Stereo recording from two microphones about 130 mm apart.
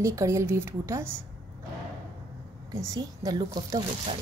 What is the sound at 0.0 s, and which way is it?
A woman's voice, 25° right (ahead or behind).